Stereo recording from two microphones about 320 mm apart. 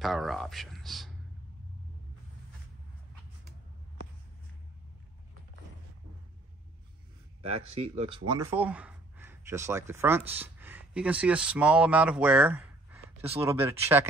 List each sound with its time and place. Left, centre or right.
0.0 s speech: centre
7.4 s speech: centre